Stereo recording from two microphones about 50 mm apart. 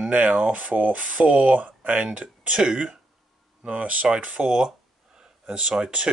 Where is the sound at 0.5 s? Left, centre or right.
Right.